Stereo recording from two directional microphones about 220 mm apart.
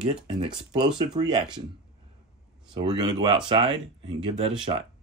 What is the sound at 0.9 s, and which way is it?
Speech, 20° right (ahead or behind).